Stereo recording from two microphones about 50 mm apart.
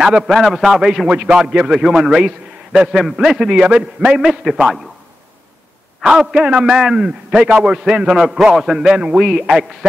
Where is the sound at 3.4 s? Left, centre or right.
Centre.